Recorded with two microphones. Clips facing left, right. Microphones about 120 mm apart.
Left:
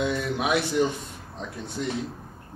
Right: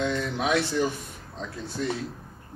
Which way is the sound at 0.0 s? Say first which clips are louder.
Left 1 dB; 10° left (ahead or behind).